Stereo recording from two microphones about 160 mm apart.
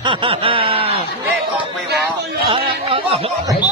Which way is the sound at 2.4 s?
35° right (ahead or behind).